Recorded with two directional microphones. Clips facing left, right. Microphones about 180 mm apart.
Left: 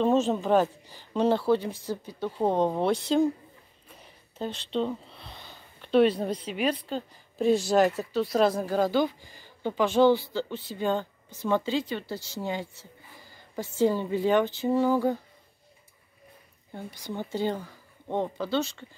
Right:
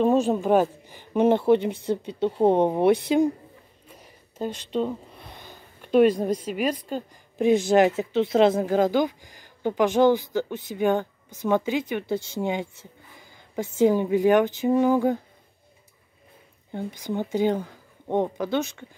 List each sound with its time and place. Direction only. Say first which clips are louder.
0.0 s a woman's voice: right 3 dB; 15° right (ahead or behind)
4.0 s a sound: right 3 dB; 10° right (ahead or behind)
6.9 s a woman's voice: right 2 dB; 15° right (ahead or behind)
16.7 s a woman's voice: right 7 dB; 15° right (ahead or behind)